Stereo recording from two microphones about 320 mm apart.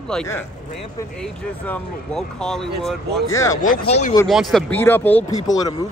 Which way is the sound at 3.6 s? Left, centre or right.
Left.